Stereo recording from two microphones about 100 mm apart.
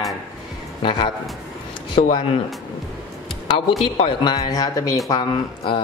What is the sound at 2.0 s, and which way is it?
Speech, 65° left (ahead or behind).